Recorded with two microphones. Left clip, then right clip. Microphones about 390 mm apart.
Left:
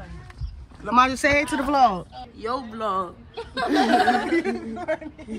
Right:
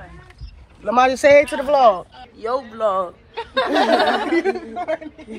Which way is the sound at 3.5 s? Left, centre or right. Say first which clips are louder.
Right 4 dB; centre.